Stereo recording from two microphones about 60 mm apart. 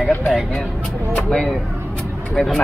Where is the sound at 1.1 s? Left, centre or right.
Centre.